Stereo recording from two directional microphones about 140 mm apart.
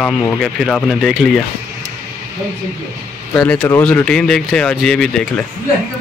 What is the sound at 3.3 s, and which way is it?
Speech, 10° left (ahead or behind).